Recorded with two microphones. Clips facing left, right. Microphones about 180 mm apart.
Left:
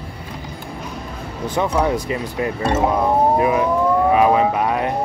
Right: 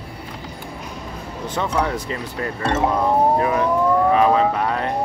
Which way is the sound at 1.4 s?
10° left (ahead or behind).